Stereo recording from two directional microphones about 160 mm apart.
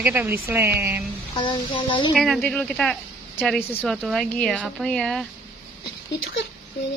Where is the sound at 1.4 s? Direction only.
30° left (ahead or behind).